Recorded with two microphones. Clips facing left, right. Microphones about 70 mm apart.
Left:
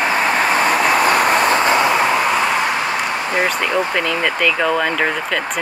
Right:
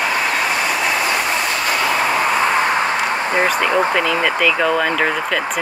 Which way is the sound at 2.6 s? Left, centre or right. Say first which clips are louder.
Right 2 dB; right.